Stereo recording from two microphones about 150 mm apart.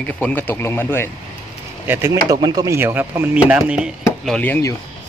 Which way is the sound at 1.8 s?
15° right (ahead or behind).